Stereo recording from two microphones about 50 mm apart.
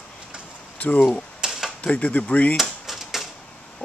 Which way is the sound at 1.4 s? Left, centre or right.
Centre.